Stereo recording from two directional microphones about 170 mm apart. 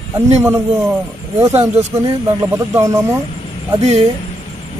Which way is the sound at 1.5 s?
40° right (ahead or behind).